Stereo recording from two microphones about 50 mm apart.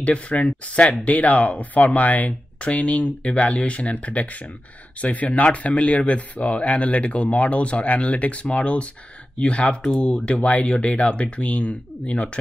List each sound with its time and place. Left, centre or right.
0.0 s speech: left